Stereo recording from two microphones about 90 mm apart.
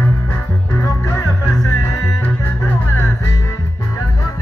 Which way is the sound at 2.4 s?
25° left (ahead or behind).